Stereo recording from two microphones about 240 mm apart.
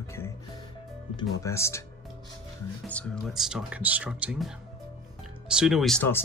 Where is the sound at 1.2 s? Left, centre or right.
Centre.